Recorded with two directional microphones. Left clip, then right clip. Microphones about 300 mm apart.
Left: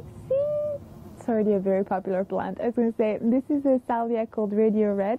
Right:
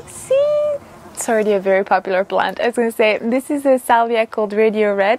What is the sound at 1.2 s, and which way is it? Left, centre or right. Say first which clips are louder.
A woman's voice: right 8 dB; centre.